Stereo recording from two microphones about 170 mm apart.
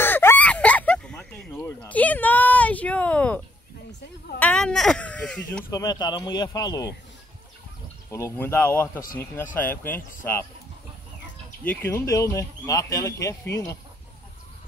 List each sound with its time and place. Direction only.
0.0 s a sound: 15° left (ahead or behind)
5.7 s speech: 20° left (ahead or behind)
8.1 s speech: 15° left (ahead or behind)
11.6 s speech: 10° left (ahead or behind)